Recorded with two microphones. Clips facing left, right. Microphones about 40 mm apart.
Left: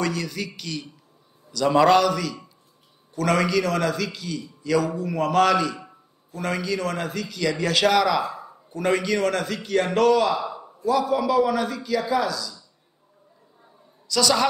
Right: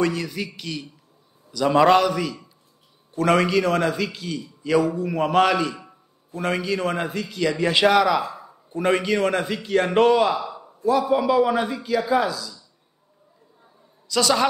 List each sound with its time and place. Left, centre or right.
0.0 s a man's voice: centre
10.4 s a sound: centre
10.8 s a man's voice: right
14.0 s a man's voice: centre